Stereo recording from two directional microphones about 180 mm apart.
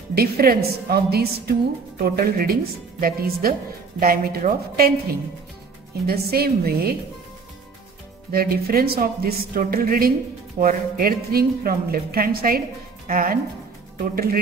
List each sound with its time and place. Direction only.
0.1 s a woman's voice: 55° right (ahead or behind)
6.0 s a woman's voice: 55° right (ahead or behind)
8.3 s a woman's voice: 55° right (ahead or behind)